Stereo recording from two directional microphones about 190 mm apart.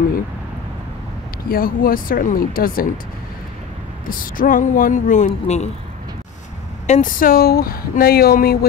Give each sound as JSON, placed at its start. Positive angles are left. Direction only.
{"t": 1.5, "sound": "speech", "side_deg": 50}
{"t": 4.1, "sound": "speech", "side_deg": 45}
{"t": 6.9, "sound": "speech", "side_deg": 45}